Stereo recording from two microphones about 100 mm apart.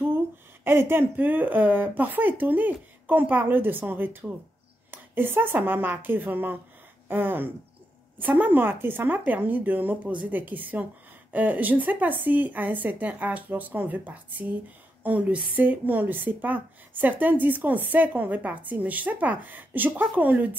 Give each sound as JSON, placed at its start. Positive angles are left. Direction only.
{"t": 0.7, "sound": "a woman's voice", "side_deg": -25}